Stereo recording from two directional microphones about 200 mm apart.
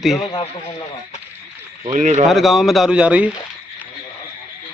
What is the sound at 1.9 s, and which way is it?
Speech, 35° right (ahead or behind).